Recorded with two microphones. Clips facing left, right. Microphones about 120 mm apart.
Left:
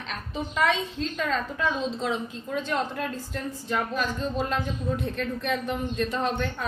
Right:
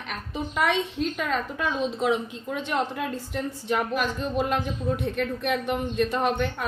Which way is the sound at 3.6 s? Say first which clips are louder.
Right 2 dB; 15° right (ahead or behind).